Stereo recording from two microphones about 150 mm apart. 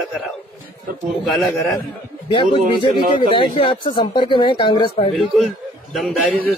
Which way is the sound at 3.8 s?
30° left (ahead or behind).